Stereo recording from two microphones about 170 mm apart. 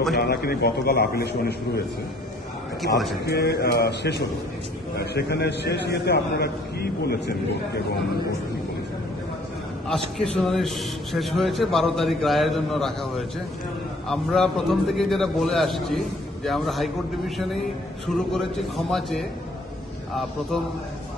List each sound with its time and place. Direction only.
0.1 s a man's voice: 70° left (ahead or behind)
3.3 s a man's voice: 70° left (ahead or behind)
9.8 s a man's voice: centre (ahead or behind)